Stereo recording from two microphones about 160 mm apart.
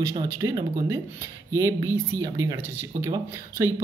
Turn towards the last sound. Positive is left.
turn(degrees=-15)  # may be behind; listen again after turning